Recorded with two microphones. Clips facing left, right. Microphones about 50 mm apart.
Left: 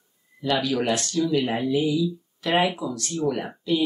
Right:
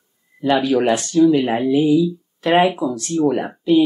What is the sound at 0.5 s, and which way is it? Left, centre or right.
Speech, right.